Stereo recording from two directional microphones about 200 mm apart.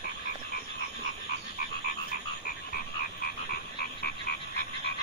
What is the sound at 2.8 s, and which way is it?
Frog, 50° left (ahead or behind).